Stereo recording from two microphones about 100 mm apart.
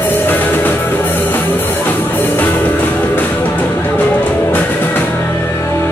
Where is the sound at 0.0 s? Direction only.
20° left (ahead or behind).